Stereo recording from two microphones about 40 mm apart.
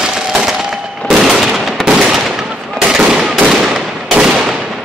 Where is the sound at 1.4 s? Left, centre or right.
Centre.